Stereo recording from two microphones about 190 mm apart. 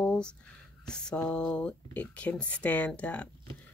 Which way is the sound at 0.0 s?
5° left (ahead or behind).